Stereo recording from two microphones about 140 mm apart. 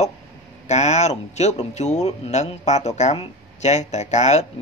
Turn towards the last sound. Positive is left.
turn(degrees=55)  # may be behind; listen again after turning